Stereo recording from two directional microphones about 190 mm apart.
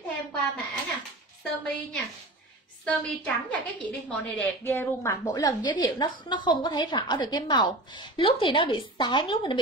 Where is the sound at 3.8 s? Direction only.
5° left (ahead or behind); by 9.5 s 25° left (ahead or behind).